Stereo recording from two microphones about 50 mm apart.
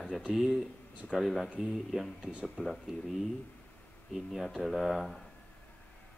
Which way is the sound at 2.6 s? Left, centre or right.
Centre.